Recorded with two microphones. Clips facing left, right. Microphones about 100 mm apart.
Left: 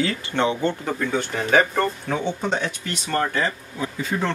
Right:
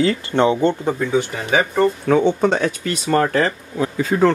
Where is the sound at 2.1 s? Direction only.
80° right.